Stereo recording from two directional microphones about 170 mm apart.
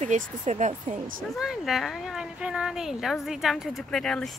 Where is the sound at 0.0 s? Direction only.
45° right (ahead or behind).